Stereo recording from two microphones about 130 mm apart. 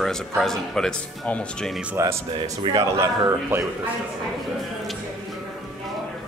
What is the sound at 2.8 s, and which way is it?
Speech, 20° right (ahead or behind).